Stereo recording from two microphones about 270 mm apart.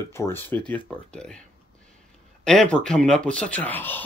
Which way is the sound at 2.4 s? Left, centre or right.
Centre.